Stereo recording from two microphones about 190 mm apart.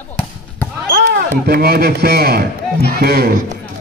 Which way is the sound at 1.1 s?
55° right (ahead or behind).